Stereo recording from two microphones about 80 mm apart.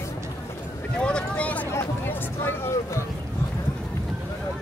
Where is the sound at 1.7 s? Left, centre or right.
Left.